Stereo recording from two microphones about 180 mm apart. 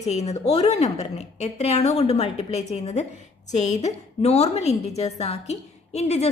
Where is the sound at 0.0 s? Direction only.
40° left (ahead or behind).